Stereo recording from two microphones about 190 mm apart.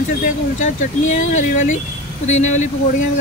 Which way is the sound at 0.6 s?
40° left (ahead or behind).